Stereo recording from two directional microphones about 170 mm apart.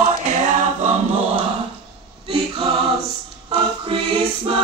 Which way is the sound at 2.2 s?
30° right (ahead or behind).